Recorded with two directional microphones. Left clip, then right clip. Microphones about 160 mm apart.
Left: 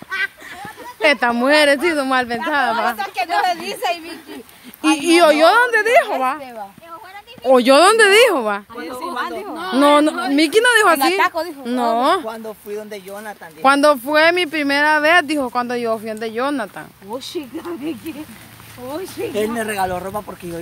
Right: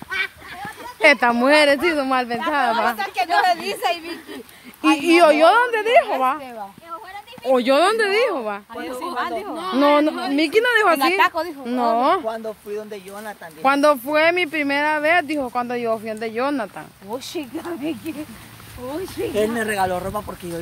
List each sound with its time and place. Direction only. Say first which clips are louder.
0.1 s a sound: left 2 dB; 10° right (ahead or behind)
1.0 s a woman's voice: even; centre (ahead or behind)
3.4 s a woman's voice: even; 10° right (ahead or behind)
4.8 s a woman's voice: left 1 dB; 5° left (ahead or behind)
7.4 s speech: left 5 dB; 40° left (ahead or behind)
8.7 s speech: left 1 dB; 20° right (ahead or behind)
9.6 s speech: left 3 dB; 25° left (ahead or behind)
11.1 s a woman's voice: left 1 dB; 5° left (ahead or behind)
11.6 s a woman's voice: left 2 dB; 15° left (ahead or behind)
12.3 s speech: right 1 dB; 70° left (ahead or behind)
13.1 s speech: left 2 dB; 20° left (ahead or behind)
17.6 s speech: right 1 dB; 40° right (ahead or behind)
18.9 s a woman's voice: left 1 dB; centre (ahead or behind)
19.3 s a woman's voice: even; 15° left (ahead or behind)